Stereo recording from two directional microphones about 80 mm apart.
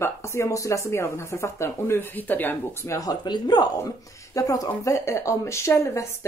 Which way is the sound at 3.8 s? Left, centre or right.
Left.